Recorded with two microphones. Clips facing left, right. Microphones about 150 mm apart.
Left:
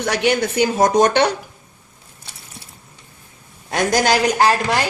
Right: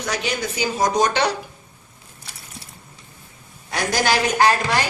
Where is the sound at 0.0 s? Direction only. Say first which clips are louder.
Left 7 dB; 65° left (ahead or behind).